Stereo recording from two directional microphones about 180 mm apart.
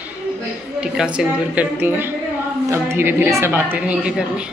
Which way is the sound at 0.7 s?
5° right (ahead or behind).